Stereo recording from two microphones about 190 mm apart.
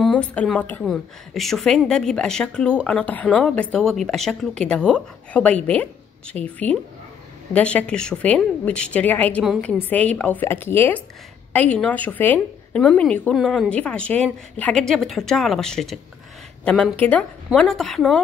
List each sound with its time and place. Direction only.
0.0 s a woman's voice: 5° left (ahead or behind)